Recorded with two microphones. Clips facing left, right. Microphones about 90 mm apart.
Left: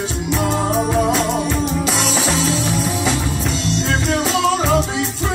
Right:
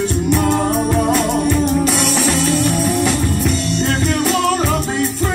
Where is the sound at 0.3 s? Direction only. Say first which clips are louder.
Right 2 dB; 50° right (ahead or behind).